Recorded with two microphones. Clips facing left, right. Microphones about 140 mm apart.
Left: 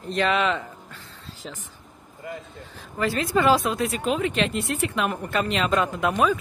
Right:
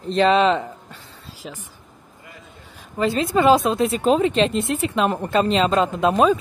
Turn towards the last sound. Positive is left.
turn(degrees=-25)  # may be behind; listen again after turning